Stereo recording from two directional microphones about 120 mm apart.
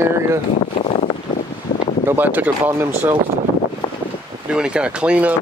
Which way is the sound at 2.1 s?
15° right (ahead or behind).